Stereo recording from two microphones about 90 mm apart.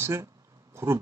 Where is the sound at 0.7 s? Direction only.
30° right (ahead or behind).